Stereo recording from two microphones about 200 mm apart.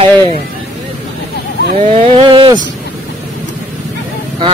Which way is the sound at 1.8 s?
30° right (ahead or behind).